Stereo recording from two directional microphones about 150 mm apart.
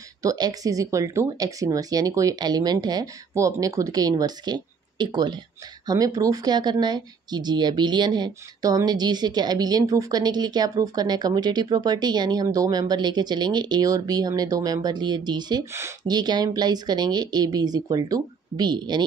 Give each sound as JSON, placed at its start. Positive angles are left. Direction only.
{"t": 0.2, "sound": "speech", "side_deg": -25}